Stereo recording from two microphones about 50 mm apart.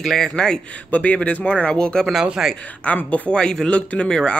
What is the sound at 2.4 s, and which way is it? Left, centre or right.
Speech, centre.